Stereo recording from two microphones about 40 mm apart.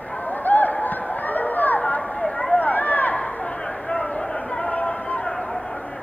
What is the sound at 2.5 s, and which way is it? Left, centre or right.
Run, left.